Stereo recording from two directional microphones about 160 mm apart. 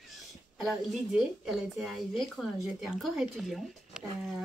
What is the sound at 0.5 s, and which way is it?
A woman's voice, centre (ahead or behind).